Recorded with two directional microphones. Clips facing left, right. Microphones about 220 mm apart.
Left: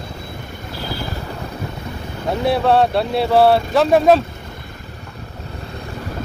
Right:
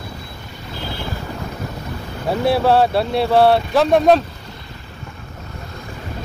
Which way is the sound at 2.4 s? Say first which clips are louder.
Even; centre (ahead or behind).